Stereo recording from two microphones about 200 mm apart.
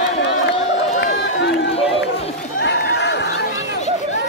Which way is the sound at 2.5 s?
60° left (ahead or behind).